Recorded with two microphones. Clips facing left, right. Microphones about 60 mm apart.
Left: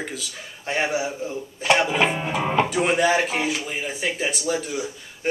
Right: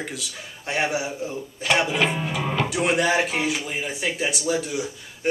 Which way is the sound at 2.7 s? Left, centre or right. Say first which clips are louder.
Left 2 dB; centre.